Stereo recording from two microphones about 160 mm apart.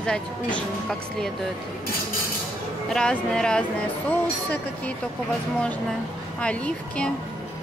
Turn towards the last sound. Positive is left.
turn(degrees=5)  # may be behind; listen again after turning